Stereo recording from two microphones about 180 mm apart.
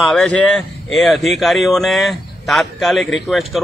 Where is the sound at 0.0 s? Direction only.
Centre (ahead or behind).